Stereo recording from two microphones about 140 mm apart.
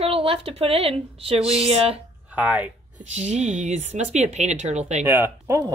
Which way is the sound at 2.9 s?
55° right (ahead or behind).